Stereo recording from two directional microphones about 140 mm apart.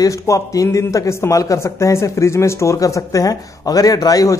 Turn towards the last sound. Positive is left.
turn(degrees=25)  # may be behind; listen again after turning